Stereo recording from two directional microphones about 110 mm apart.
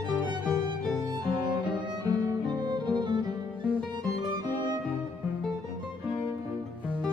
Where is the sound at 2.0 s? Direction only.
40° right (ahead or behind).